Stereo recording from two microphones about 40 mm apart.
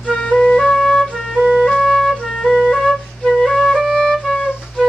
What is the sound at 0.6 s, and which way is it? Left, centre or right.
Flute, centre.